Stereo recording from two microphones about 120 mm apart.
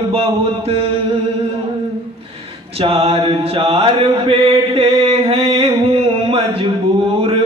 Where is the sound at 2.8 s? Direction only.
55° right (ahead or behind).